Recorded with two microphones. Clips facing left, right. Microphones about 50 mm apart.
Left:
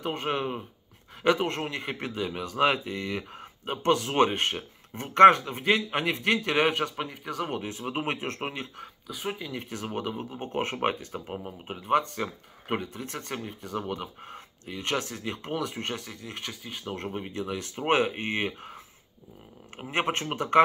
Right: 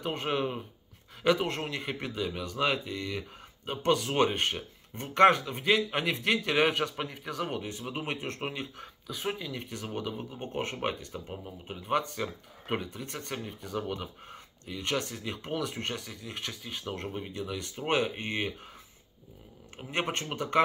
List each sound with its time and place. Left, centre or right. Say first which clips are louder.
0.0 s a man's voice: left 1 dB; centre
8.5 s a man's voice: left 1 dB; centre
11.1 s speech: left 4 dB; left
11.9 s a man's voice: left 4 dB; centre
19.9 s a man's voice: left 4 dB; centre